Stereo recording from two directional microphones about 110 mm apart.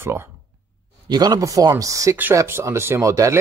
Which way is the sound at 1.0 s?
40° right (ahead or behind).